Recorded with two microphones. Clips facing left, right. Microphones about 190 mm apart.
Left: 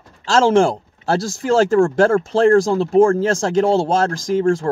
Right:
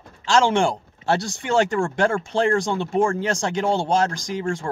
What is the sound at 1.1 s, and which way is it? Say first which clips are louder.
Speech: left 3 dB; centre (ahead or behind).